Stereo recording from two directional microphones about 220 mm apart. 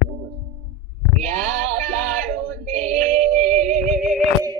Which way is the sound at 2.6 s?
30° right (ahead or behind).